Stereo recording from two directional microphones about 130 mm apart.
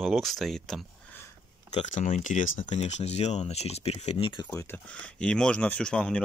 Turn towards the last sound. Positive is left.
turn(degrees=10)  # may be behind; listen again after turning